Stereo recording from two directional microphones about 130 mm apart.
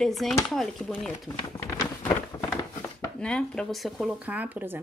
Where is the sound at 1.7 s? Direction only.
20° left (ahead or behind).